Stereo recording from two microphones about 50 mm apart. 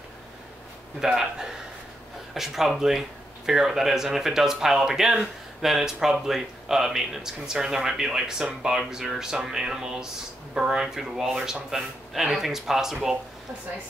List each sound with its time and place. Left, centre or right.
1.0 s speech: centre
10.8 s speech: centre